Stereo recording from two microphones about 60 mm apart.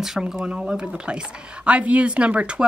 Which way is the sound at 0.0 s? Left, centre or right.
Centre.